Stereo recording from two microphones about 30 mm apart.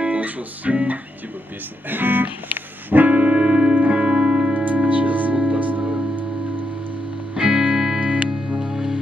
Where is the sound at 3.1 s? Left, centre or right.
Right.